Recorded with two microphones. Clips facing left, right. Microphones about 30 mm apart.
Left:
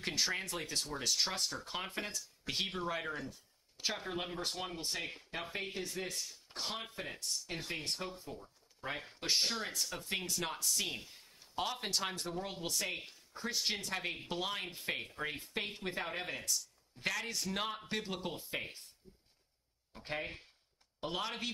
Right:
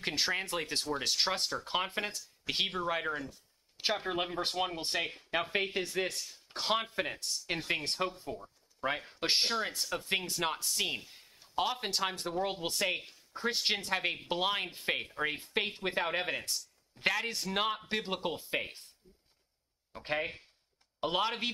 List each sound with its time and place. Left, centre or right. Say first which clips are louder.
0.0 s a woman's voice: right 3 dB; right
3.0 s speech: right 5 dB; centre
3.7 s a sound: right 6 dB; right
4.0 s speech: right 6 dB; right
5.3 s speech: right 10 dB; right
8.3 s a sound: right 6 dB; right
9.2 s a woman's voice: right 4 dB; right
12.6 s a woman's voice: right 5 dB; right
15.8 s a woman's voice: right 7 dB; right
21.0 s a woman's voice: right 7 dB; right